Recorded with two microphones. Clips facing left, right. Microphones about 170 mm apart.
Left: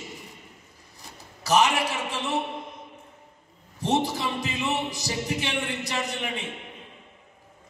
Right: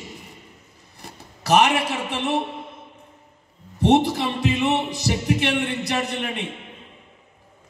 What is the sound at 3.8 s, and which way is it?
A man's voice, 65° right (ahead or behind).